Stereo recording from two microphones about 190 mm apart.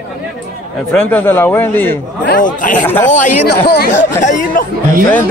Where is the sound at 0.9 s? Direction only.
10° left (ahead or behind).